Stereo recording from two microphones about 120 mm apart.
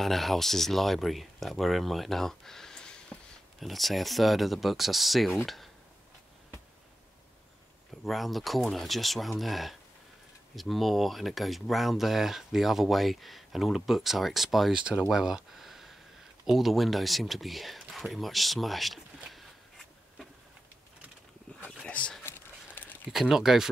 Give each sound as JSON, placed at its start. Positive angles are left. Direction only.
{"t": 0.0, "sound": "speech", "side_deg": 0}
{"t": 8.0, "sound": "speech", "side_deg": 0}
{"t": 21.8, "sound": "a sound", "side_deg": 10}
{"t": 23.1, "sound": "speech", "side_deg": -5}